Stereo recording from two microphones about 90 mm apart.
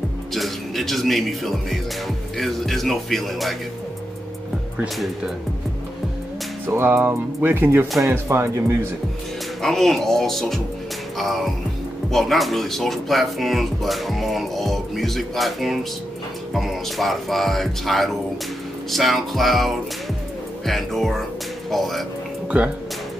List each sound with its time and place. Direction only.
0.3 s speech: centre (ahead or behind)
4.9 s speech: centre (ahead or behind)
6.7 s speech: 25° right (ahead or behind)
9.6 s speech: 5° left (ahead or behind)
22.5 s speech: 15° right (ahead or behind)